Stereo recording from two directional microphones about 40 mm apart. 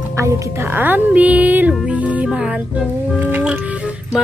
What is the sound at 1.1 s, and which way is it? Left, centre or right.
Speech, right.